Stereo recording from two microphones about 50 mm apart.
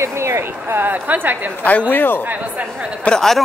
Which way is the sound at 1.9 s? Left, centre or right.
Left.